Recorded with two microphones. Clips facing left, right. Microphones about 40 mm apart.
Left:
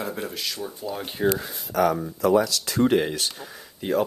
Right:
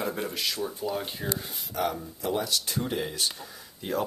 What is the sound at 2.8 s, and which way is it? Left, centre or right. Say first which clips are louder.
Speech: left 10 dB; left.